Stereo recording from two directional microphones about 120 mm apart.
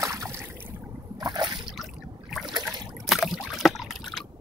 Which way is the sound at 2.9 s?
Centre (ahead or behind).